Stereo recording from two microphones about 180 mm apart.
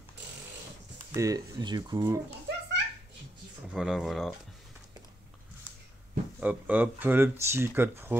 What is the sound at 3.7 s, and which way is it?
Speech, centre (ahead or behind).